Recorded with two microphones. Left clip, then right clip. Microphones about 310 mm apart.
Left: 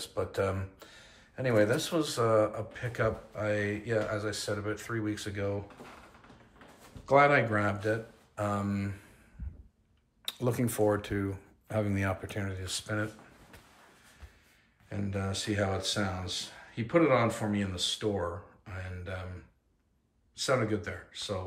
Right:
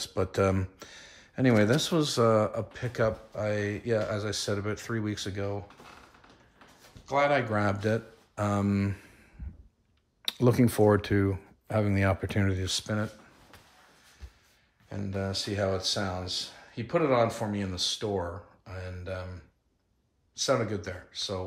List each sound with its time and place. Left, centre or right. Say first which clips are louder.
0.0 s speech: right 4 dB; right
7.1 s speech: left 2 dB; centre
7.5 s speech: right 2 dB; centre
10.2 s speech: right 7 dB; right
14.9 s speech: right 2 dB; centre
18.7 s a sound: right 3 dB; centre
20.3 s speech: right 2 dB; centre